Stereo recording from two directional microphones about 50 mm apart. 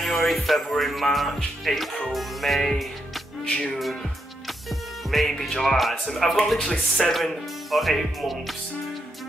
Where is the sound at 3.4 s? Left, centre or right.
Left.